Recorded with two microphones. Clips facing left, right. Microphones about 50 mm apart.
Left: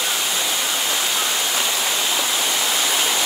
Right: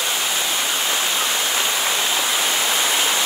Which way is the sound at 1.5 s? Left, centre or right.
Centre.